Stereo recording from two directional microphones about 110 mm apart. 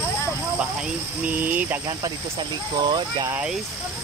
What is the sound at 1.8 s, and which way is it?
Speech, 35° right (ahead or behind).